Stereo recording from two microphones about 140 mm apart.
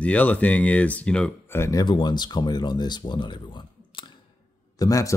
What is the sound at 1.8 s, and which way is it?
Speech, 35° left (ahead or behind).